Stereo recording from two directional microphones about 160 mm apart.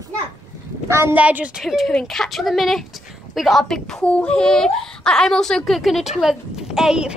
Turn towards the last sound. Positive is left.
turn(degrees=-5)  # may be behind; listen again after turning